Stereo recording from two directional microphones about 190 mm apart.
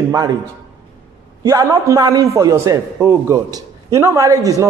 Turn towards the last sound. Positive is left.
turn(degrees=-15)  # may be behind; listen again after turning